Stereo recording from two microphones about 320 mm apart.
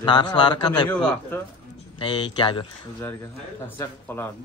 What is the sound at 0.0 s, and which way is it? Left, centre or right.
A man's voice, centre.